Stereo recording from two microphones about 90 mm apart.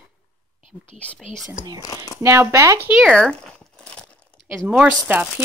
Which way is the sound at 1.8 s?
40° left (ahead or behind).